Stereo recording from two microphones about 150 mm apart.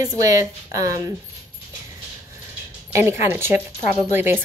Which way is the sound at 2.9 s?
15° right (ahead or behind).